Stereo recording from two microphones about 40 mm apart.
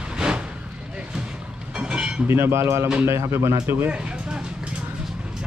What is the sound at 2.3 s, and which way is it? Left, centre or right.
Speech, right.